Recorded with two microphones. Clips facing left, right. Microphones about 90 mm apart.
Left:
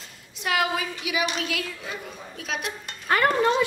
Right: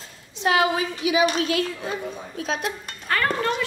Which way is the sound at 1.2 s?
40° right (ahead or behind).